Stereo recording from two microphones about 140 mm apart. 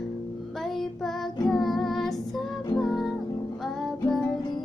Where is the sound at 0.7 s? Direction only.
Centre (ahead or behind).